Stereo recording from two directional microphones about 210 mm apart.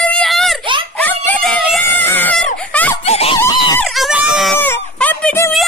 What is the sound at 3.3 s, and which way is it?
Screaming, 20° left (ahead or behind).